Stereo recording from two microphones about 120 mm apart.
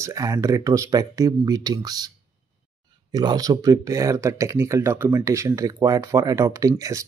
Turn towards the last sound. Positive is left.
turn(degrees=-25)  # may be behind; listen again after turning